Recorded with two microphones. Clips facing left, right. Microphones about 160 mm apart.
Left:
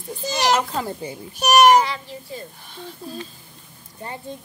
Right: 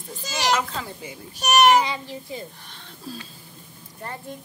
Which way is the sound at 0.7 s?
45° left (ahead or behind).